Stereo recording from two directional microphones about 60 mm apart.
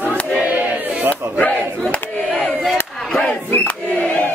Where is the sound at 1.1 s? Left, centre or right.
Left.